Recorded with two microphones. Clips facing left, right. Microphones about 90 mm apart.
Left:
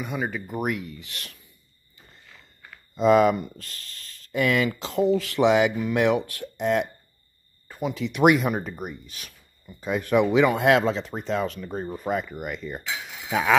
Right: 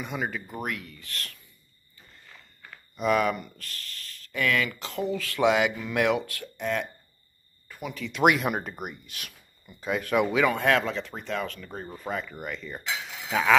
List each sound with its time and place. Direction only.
0.0 s speech: centre (ahead or behind)
0.3 s speech: 15° left (ahead or behind)
3.0 s speech: 25° left (ahead or behind)
7.6 s a sound: 30° left (ahead or behind)
8.2 s speech: centre (ahead or behind)
10.4 s speech: 20° left (ahead or behind)